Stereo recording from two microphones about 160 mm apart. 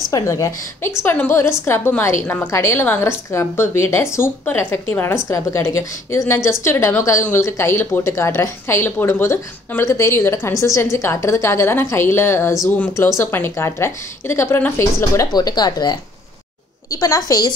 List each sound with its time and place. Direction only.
0.1 s a woman's voice: 20° left (ahead or behind)